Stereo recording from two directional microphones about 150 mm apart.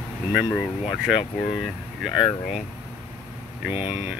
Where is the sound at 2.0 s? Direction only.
Centre (ahead or behind).